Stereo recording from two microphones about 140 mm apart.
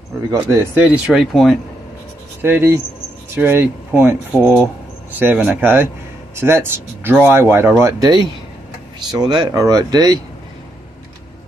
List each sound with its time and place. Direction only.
0.3 s speech: 20° right (ahead or behind); by 1.6 s centre (ahead or behind)
2.4 s speech: 15° right (ahead or behind)